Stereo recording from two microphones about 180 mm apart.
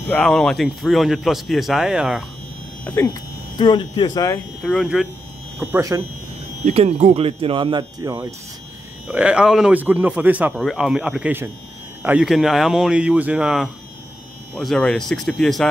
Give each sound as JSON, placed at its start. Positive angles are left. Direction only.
{"t": 0.1, "sound": "speech", "side_deg": 5}
{"t": 2.8, "sound": "speech", "side_deg": 10}
{"t": 3.5, "sound": "speech", "side_deg": 25}
{"t": 4.6, "sound": "speech", "side_deg": 0}
{"t": 5.6, "sound": "speech", "side_deg": -15}
{"t": 6.6, "sound": "speech", "side_deg": -35}
{"t": 9.0, "sound": "speech", "side_deg": -10}